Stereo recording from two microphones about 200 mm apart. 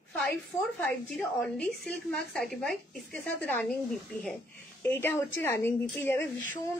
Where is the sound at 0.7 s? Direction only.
5° left (ahead or behind).